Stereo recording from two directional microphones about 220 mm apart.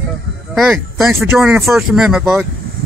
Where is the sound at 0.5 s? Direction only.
Centre (ahead or behind).